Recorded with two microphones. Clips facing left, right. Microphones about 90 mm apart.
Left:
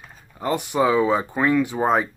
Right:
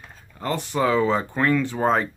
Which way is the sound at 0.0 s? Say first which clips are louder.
Left 3 dB; 15° left (ahead or behind).